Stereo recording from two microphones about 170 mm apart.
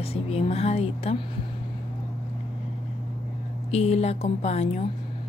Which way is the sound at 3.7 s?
40° left (ahead or behind).